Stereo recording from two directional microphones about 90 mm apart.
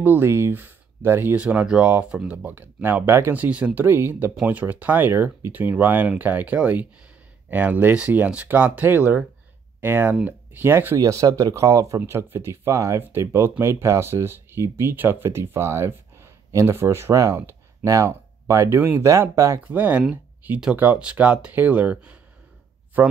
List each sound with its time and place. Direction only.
0.0 s speech: 20° right (ahead or behind)
3.4 s speech: 15° right (ahead or behind)
3.8 s speech: 25° right (ahead or behind)
11.0 s speech: 40° right (ahead or behind)
19.6 s speech: 15° right (ahead or behind)